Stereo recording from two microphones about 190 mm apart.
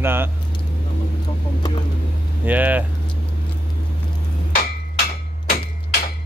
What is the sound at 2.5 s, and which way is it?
Speech, 10° right (ahead or behind).